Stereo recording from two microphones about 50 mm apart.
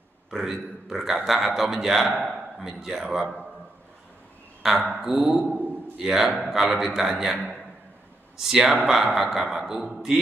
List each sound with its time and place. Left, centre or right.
0.3 s a man's voice: centre
4.6 s a man's voice: centre
5.4 s a sound: right
6.0 s a man's voice: centre
8.4 s a man's voice: centre